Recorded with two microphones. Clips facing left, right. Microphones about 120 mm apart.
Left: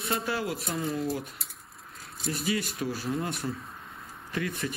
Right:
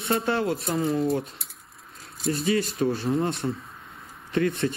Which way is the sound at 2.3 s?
30° right (ahead or behind).